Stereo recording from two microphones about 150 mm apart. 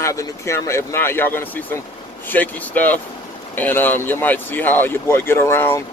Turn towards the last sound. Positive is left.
turn(degrees=15)  # may be behind; listen again after turning